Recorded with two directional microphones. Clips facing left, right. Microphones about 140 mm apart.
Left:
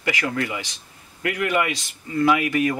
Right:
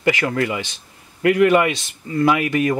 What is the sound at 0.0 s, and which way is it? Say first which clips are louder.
A man's voice: right 6 dB; 35° right (ahead or behind).